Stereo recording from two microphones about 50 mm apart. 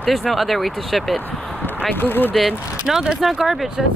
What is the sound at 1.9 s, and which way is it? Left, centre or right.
Speech, left.